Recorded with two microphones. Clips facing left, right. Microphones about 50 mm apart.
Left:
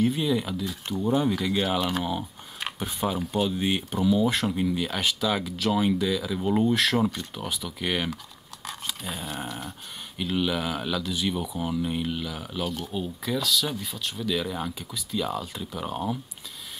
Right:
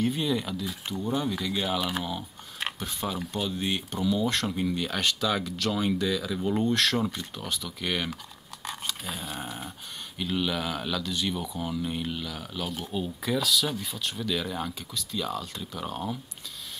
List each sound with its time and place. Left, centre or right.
0.0 s speech: centre
1.8 s speech: centre
2.8 s speech: centre
8.6 s a sound: centre
9.5 s dog: centre
10.1 s speech: centre
12.6 s speech: centre